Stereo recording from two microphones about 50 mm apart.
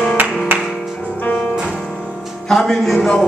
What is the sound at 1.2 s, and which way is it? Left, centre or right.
Music, left.